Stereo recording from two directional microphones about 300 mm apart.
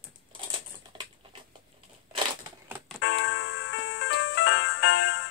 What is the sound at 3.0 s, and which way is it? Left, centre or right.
Music, left.